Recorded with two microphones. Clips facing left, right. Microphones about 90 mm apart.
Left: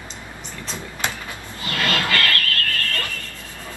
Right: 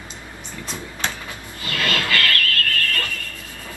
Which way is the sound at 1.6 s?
25° left (ahead or behind).